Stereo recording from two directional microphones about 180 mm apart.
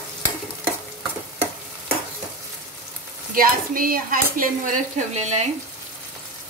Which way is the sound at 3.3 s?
50° right (ahead or behind).